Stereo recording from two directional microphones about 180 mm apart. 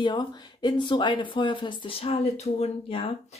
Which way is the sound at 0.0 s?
25° left (ahead or behind).